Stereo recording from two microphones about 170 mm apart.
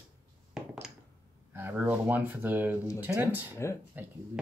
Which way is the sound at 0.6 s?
Centre (ahead or behind).